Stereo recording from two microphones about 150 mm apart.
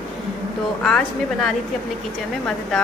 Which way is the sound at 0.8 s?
5° left (ahead or behind).